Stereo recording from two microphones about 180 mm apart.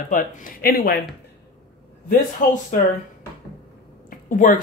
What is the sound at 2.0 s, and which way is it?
Speech, 45° left (ahead or behind).